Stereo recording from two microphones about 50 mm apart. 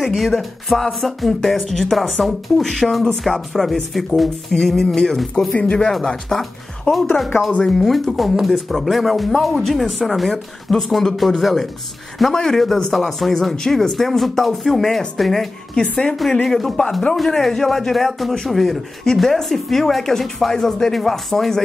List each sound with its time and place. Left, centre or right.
0.0 s speech: centre
5.5 s speech: left
6.2 s speech: centre
15.7 s speech: centre
16.4 s speech: centre